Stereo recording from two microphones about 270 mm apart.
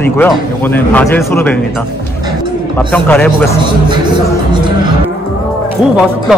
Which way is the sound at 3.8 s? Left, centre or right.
Centre.